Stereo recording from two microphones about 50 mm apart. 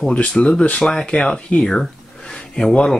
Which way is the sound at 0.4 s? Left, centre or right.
Left.